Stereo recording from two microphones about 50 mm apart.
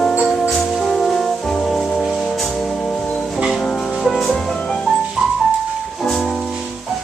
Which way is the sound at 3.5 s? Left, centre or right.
Centre.